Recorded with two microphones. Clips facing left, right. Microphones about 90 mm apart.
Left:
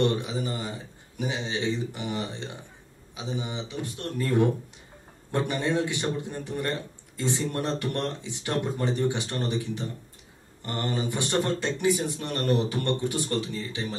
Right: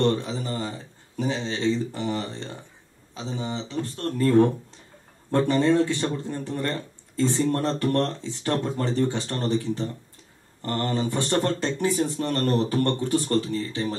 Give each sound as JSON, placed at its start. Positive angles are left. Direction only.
{"t": 0.0, "sound": "speech", "side_deg": 15}